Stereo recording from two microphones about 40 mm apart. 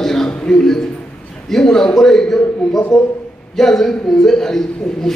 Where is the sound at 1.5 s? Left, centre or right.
Centre.